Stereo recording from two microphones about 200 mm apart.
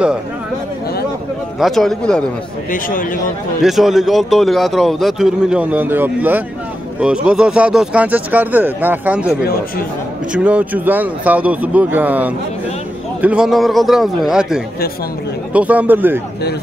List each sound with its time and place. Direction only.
1.6 s a man's voice: centre (ahead or behind)
2.7 s speech: 40° left (ahead or behind)
3.6 s a man's voice: centre (ahead or behind)
10.3 s a man's voice: 5° right (ahead or behind)